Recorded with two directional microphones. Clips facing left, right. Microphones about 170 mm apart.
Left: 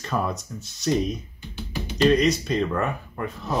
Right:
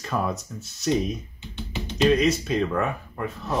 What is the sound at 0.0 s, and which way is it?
Speech, 5° right (ahead or behind).